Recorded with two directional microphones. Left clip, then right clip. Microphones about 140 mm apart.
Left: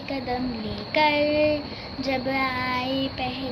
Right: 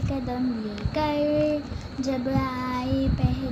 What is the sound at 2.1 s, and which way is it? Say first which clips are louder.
Child singing: left 3 dB; 50° right (ahead or behind).